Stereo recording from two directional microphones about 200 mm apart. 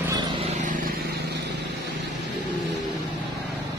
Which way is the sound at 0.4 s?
40° right (ahead or behind).